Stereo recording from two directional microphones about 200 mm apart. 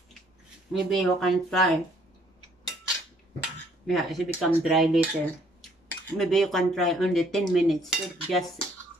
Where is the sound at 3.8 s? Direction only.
Centre (ahead or behind).